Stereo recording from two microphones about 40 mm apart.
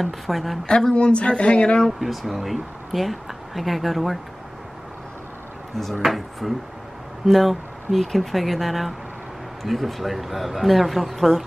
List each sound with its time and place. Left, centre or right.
0.0 s speech: centre
0.7 s a woman's voice: left
1.9 s speech: centre
6.0 s speech: centre